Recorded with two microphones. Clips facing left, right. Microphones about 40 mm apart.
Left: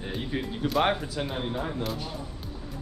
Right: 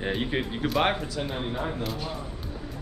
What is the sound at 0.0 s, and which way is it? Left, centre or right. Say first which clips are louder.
Speech: right 4 dB; right.